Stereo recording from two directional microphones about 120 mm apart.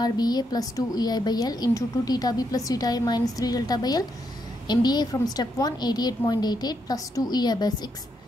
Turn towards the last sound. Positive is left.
turn(degrees=35)  # may be behind; listen again after turning